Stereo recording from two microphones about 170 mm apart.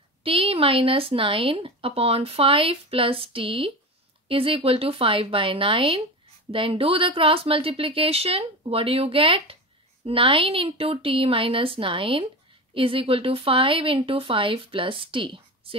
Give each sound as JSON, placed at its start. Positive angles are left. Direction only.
{"t": 0.2, "sound": "speech", "side_deg": -35}